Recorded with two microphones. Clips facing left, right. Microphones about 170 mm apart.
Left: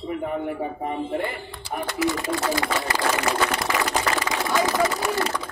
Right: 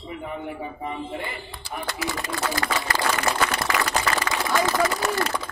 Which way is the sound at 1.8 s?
25° left (ahead or behind).